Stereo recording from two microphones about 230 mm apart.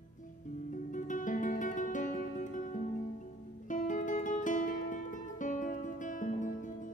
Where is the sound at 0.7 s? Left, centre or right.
Left.